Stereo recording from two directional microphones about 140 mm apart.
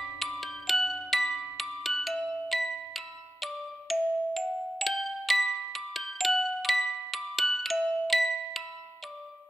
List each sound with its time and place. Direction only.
0.2 s glockenspiel: centre (ahead or behind)
8.1 s music: centre (ahead or behind)